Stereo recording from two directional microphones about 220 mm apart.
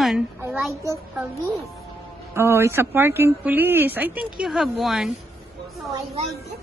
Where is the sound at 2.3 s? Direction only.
10° right (ahead or behind).